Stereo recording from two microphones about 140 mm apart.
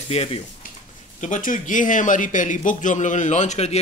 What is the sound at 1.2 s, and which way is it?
Speech, 65° left (ahead or behind).